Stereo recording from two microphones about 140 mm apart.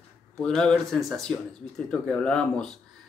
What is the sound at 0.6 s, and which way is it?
Speech, 5° left (ahead or behind).